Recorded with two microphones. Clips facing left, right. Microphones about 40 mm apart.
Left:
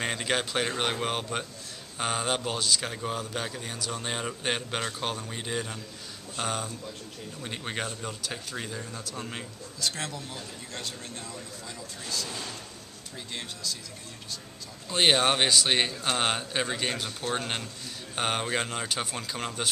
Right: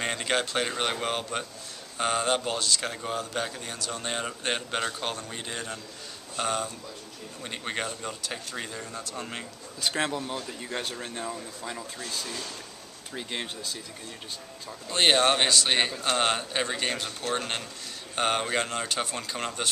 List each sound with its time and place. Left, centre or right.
0.0 s a man's voice: centre
9.8 s speech: right
14.9 s a man's voice: centre